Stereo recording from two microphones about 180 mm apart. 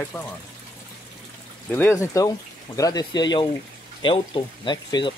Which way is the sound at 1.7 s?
15° left (ahead or behind).